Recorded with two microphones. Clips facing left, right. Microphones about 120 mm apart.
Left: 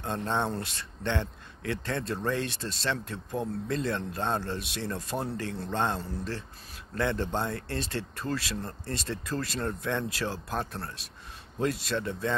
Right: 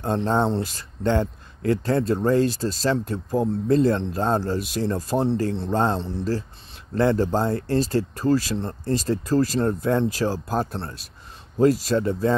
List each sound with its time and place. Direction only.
0.0 s speech: 35° right (ahead or behind)